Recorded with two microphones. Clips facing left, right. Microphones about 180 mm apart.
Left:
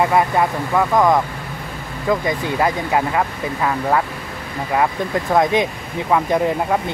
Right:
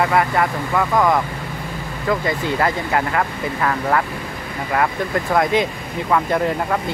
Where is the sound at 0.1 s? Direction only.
15° left (ahead or behind).